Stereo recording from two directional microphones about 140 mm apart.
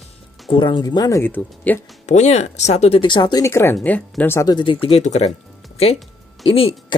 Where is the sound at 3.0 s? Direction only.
35° left (ahead or behind).